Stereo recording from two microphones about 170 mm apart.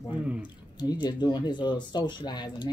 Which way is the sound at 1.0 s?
25° left (ahead or behind).